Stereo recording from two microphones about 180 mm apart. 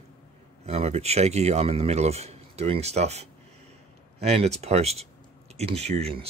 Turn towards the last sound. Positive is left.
turn(degrees=-35)  # may be behind; listen again after turning